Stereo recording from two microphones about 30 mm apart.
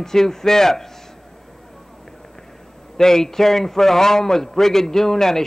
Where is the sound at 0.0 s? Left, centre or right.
Centre.